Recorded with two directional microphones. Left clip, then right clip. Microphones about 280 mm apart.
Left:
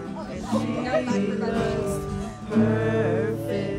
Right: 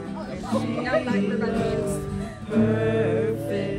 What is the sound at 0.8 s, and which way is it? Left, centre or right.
Music, left.